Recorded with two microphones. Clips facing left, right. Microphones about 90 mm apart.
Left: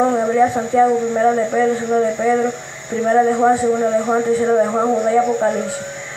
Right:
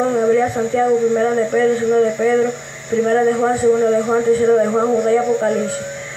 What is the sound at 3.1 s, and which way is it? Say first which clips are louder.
Speech: left 3 dB; 10° left (ahead or behind).